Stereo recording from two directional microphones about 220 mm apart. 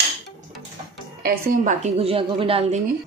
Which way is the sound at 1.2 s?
40° right (ahead or behind).